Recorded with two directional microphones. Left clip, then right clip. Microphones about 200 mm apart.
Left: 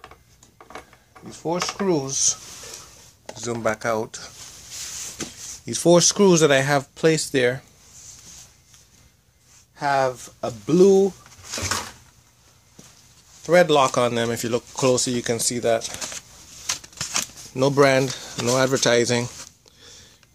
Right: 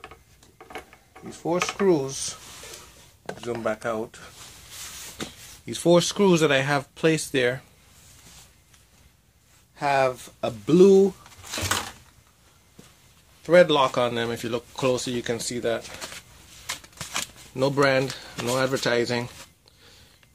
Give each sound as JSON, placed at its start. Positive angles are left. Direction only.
{"t": 1.5, "sound": "mechanisms", "side_deg": 15}
{"t": 1.9, "sound": "speech", "side_deg": 15}
{"t": 3.4, "sound": "speech", "side_deg": 35}
{"t": 5.7, "sound": "speech", "side_deg": 25}
{"t": 9.8, "sound": "speech", "side_deg": 0}
{"t": 10.8, "sound": "speech", "side_deg": -15}
{"t": 11.5, "sound": "a sound", "side_deg": -25}
{"t": 13.4, "sound": "speech", "side_deg": 25}
{"t": 17.6, "sound": "speech", "side_deg": 30}